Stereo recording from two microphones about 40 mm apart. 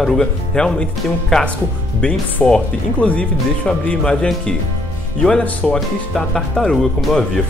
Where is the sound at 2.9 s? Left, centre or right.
Left.